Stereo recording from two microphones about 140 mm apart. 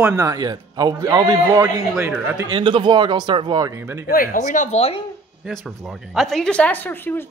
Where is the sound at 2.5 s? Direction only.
35° right (ahead or behind).